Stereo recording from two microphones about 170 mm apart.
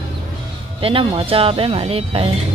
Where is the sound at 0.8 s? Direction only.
30° right (ahead or behind).